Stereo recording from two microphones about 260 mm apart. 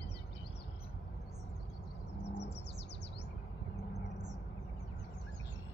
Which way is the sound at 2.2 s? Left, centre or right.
Left.